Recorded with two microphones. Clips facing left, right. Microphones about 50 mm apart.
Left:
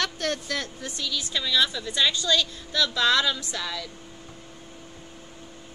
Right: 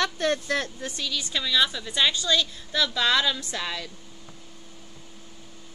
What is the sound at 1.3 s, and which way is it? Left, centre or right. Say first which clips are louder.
A woman's voice: even; centre.